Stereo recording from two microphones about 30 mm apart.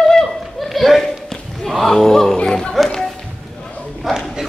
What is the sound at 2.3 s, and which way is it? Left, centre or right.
Speech, left.